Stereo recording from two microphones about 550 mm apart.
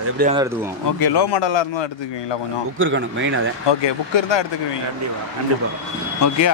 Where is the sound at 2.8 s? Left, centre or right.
Right.